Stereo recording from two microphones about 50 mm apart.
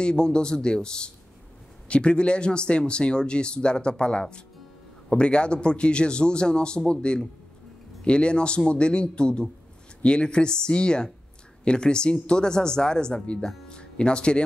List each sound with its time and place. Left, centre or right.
0.0 s speech: centre